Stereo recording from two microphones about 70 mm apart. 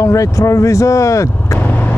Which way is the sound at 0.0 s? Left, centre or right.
Left.